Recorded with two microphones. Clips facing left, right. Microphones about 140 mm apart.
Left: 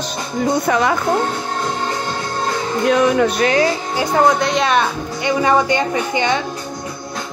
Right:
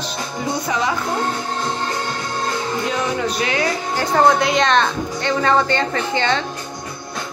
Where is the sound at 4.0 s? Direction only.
5° left (ahead or behind).